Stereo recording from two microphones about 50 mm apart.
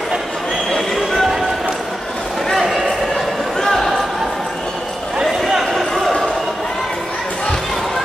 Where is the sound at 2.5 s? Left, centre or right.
Centre.